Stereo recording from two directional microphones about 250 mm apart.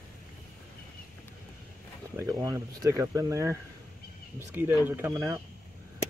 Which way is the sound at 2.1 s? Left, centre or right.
Centre.